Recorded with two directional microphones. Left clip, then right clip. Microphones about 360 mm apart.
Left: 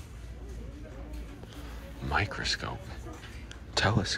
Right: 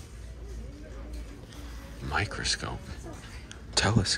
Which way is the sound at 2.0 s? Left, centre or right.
Centre.